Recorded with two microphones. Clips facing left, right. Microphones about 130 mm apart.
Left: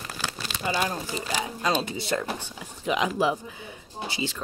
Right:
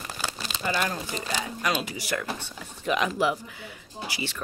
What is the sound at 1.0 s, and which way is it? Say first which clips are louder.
Speech: left 1 dB; 10° left (ahead or behind).